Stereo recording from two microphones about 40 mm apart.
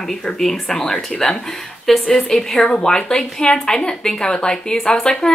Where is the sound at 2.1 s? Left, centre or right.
Centre.